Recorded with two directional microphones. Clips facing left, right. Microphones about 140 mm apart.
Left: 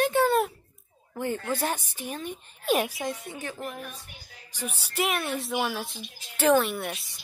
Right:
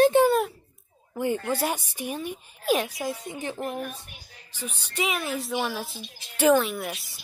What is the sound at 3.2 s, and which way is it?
Speech, 20° right (ahead or behind).